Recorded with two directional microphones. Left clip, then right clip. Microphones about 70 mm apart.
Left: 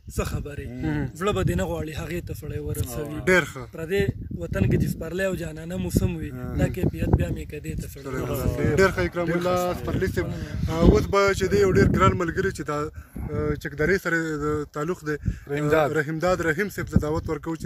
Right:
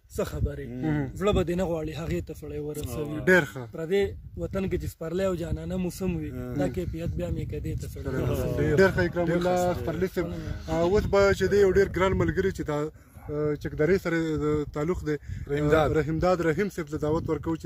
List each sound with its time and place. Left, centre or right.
1.2 s speech: right
3.3 s a man's voice: right
3.8 s speech: right
8.7 s speech: right
9.5 s speech: right
10.7 s speech: right
11.0 s speech: right
13.3 s speech: right
15.5 s a man's voice: left
15.9 s speech: right